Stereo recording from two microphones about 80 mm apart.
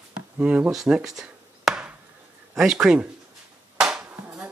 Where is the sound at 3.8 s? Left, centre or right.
Centre.